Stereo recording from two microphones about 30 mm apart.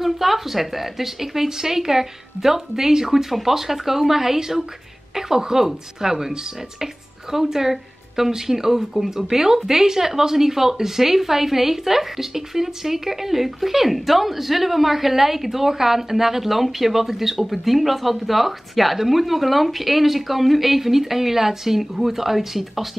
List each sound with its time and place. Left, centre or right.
0.0 s speech: centre